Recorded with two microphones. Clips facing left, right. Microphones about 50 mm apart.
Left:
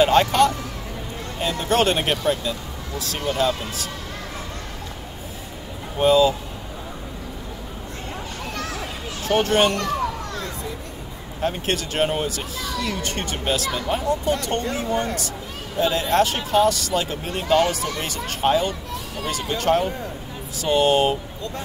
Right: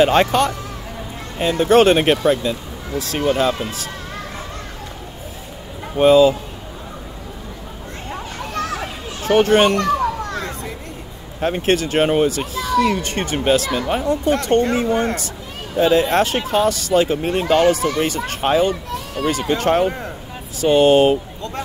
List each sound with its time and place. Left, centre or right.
0.0 s speech: right
5.9 s speech: right
9.4 s speech: right
11.4 s speech: right
13.9 s speech: right
17.3 s speech: right
20.6 s speech: right